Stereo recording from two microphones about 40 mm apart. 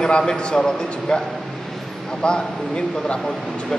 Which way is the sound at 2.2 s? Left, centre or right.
Left.